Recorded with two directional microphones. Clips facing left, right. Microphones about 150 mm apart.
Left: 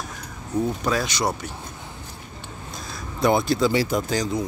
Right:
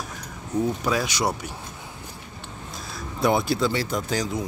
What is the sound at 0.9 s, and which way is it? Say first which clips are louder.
Speech: left 1 dB; 10° right (ahead or behind).